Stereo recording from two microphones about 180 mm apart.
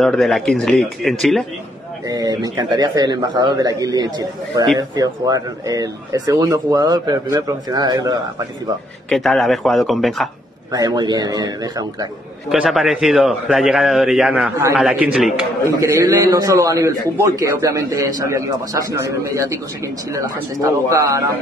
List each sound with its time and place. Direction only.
0.0 s a man's voice: centre (ahead or behind)
2.0 s speech: 20° right (ahead or behind)
9.1 s a man's voice: centre (ahead or behind)
10.7 s speech: 20° right (ahead or behind)
12.4 s a man's voice: centre (ahead or behind)
15.8 s a man's voice: 15° right (ahead or behind)